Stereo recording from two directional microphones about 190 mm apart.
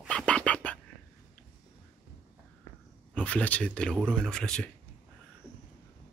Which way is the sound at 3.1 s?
5° left (ahead or behind).